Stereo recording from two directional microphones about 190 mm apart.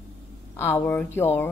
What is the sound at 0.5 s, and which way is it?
Speech, 10° left (ahead or behind).